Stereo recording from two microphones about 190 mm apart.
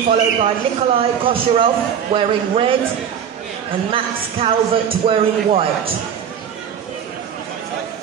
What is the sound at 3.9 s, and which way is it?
Speech, 30° right (ahead or behind).